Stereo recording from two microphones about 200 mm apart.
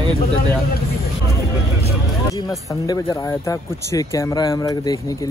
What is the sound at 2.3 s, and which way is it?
Speech, 20° left (ahead or behind).